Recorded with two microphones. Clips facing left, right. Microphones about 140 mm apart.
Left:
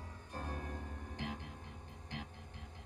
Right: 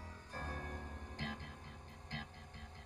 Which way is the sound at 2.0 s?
60° left (ahead or behind).